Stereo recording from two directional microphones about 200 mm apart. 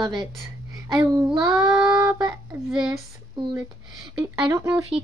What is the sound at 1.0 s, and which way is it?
Speech, 15° right (ahead or behind).